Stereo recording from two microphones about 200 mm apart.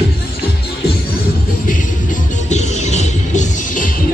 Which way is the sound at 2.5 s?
35° left (ahead or behind).